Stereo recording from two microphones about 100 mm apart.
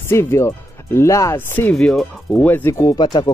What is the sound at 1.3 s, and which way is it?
Speech, 20° left (ahead or behind).